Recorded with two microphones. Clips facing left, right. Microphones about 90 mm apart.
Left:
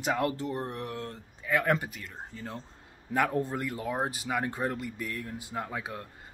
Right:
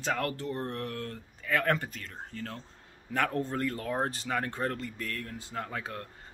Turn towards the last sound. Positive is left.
turn(degrees=15)  # may be behind; listen again after turning